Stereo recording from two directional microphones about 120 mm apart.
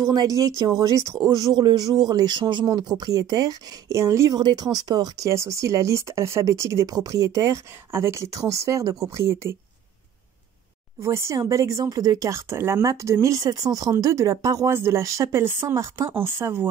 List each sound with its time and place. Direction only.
0.0 s speech: 30° right (ahead or behind)
11.0 s speech: 25° right (ahead or behind)